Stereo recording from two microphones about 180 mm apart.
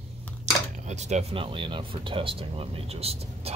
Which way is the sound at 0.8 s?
40° right (ahead or behind).